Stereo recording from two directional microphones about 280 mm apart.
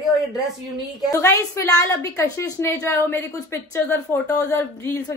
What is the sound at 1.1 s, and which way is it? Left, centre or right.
A woman's voice, centre.